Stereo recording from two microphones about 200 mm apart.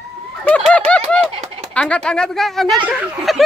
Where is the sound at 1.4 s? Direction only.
35° right (ahead or behind).